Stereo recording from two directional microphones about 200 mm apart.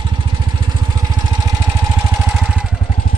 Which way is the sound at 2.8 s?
40° left (ahead or behind).